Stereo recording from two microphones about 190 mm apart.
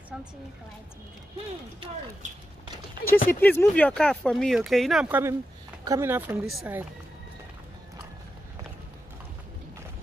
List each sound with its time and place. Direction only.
2.2 s speech: 40° right (ahead or behind)
3.3 s speech: 10° left (ahead or behind); by 6.9 s 10° right (ahead or behind)